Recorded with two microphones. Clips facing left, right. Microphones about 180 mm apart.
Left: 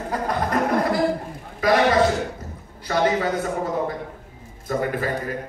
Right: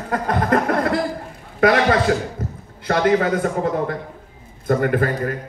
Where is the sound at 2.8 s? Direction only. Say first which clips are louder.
Right 4 dB; 55° right (ahead or behind).